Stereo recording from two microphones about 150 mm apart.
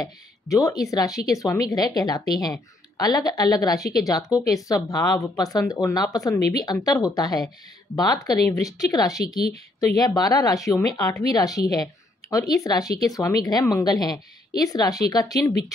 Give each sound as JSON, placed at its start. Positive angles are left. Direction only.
{"t": 0.0, "sound": "speech", "side_deg": 20}